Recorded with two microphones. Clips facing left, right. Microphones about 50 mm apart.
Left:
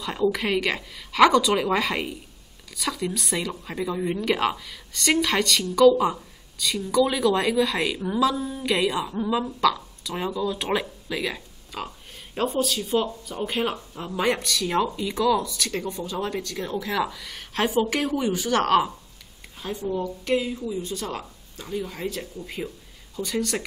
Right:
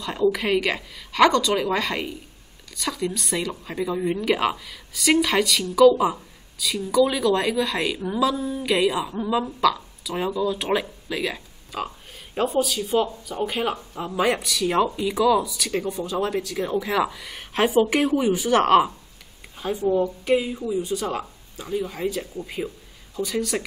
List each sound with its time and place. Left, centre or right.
0.0 s a woman's voice: centre